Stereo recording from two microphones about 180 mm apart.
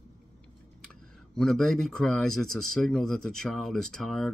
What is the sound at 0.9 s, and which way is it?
Speech, 5° left (ahead or behind).